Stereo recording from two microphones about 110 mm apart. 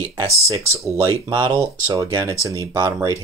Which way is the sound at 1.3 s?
45° right (ahead or behind).